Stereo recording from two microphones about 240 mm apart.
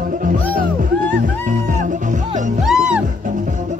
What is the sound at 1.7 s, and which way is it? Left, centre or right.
Music, right.